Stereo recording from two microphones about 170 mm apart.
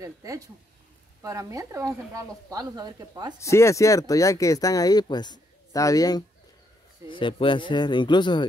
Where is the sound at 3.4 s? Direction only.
15° left (ahead or behind).